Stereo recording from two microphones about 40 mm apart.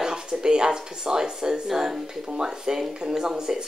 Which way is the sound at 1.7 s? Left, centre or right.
Centre.